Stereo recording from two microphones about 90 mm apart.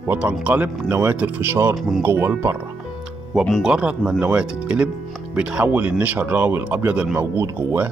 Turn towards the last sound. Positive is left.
turn(degrees=-25)  # may be behind; listen again after turning